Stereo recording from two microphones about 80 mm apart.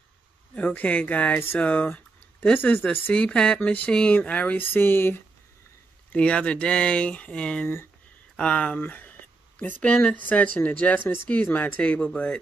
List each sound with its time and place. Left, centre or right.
0.6 s speech: centre
3.2 s speech: centre; by 5.2 s left
6.1 s speech: centre